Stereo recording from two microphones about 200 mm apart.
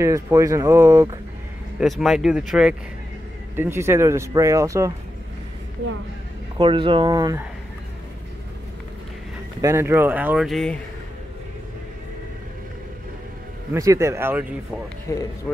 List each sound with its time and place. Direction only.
0.0 s speech: 15° right (ahead or behind)
1.8 s speech: centre (ahead or behind)
6.6 s speech: 25° right (ahead or behind)
9.6 s speech: 15° right (ahead or behind); by 10.8 s centre (ahead or behind)
13.7 s speech: 15° right (ahead or behind)
15.0 s speech: 15° left (ahead or behind)